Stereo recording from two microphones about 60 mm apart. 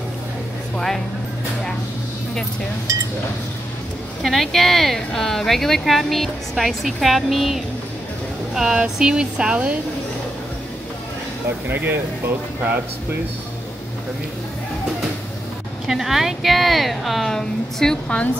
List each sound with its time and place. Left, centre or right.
0.7 s speech: centre
4.2 s speech: centre
11.7 s speech: right
15.9 s speech: centre